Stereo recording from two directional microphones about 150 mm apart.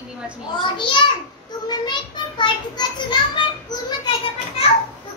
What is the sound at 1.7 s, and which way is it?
A child's voice, 30° left (ahead or behind).